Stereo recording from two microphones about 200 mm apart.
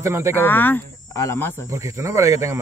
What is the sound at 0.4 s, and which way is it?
Speech, 10° left (ahead or behind).